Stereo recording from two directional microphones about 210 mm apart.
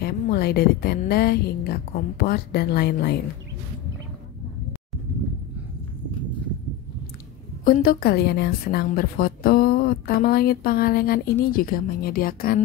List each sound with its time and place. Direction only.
0.0 s a woman's voice: 50° left (ahead or behind)
7.6 s a woman's voice: 45° left (ahead or behind)